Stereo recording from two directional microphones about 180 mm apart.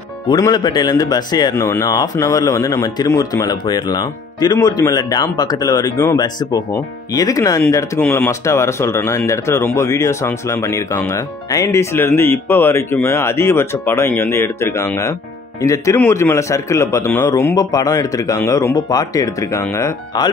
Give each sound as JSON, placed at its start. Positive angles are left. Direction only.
{"t": 0.3, "sound": "speech", "side_deg": 25}